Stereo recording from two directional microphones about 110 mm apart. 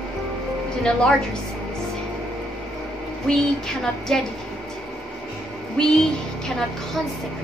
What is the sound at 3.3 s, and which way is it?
Speech, 5° left (ahead or behind).